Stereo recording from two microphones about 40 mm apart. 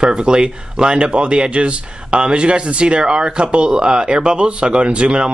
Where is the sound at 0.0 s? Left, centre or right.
Right.